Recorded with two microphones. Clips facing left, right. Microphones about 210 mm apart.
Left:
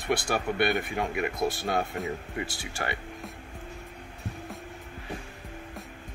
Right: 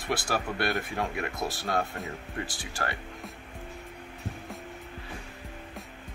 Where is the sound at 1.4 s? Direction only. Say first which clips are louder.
Left 1 dB; 20° left (ahead or behind).